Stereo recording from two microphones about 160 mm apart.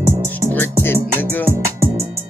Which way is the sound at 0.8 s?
15° left (ahead or behind).